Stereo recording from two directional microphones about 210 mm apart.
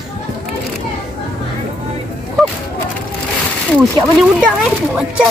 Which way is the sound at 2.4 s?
Centre (ahead or behind).